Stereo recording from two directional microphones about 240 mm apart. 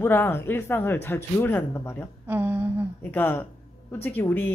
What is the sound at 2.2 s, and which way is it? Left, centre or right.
Speech, centre.